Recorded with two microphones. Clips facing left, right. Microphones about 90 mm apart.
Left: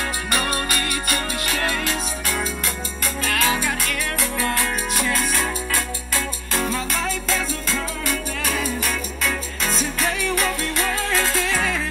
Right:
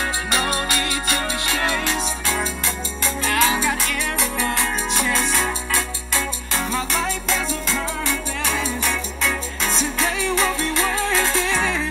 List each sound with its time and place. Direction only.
0.3 s music: 25° right (ahead or behind)